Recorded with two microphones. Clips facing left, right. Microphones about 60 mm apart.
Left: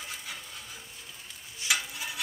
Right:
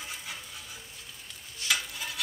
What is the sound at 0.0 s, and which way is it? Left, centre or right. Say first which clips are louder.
Stir: even; centre.